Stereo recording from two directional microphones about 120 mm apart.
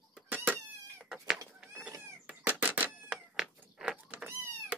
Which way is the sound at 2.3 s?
15° right (ahead or behind).